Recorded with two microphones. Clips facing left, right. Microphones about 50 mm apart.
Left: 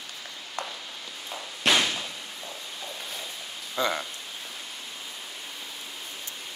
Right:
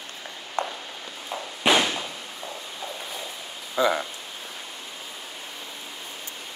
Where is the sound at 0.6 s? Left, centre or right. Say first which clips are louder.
Right 7 dB; right.